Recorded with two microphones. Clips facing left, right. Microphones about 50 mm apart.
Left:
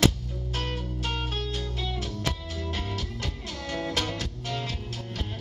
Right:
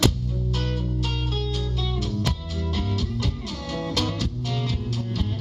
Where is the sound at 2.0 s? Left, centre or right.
Left.